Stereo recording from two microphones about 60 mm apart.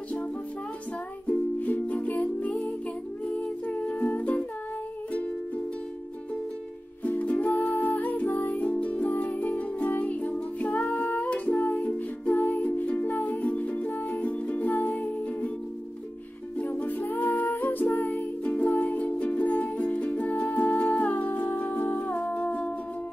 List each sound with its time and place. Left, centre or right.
1.6 s music: left
7.1 s music: left
16.5 s music: left